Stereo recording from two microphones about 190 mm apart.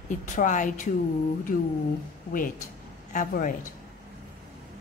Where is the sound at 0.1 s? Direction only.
40° left (ahead or behind).